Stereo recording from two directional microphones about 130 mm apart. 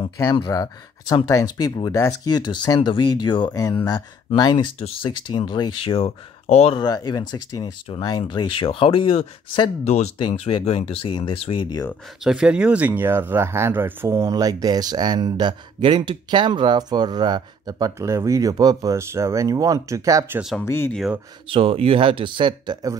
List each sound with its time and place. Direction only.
0.4 s speech: 30° left (ahead or behind); by 6.8 s 55° left (ahead or behind)
6.8 s speech: 30° left (ahead or behind)
12.2 s speech: 5° right (ahead or behind); by 20.3 s 25° right (ahead or behind)
20.6 s speech: 20° left (ahead or behind)
20.9 s speech: centre (ahead or behind)
21.5 s speech: 45° right (ahead or behind)